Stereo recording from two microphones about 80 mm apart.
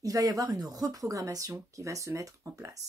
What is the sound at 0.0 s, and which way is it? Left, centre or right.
Speech, right.